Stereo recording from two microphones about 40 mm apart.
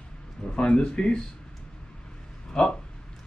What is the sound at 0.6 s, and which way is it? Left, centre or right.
Speech, left.